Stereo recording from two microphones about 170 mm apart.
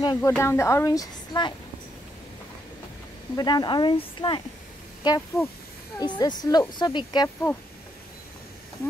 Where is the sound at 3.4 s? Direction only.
25° left (ahead or behind).